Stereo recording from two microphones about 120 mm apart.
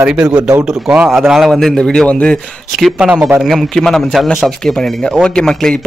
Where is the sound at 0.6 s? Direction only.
10° right (ahead or behind); by 2.3 s 10° left (ahead or behind).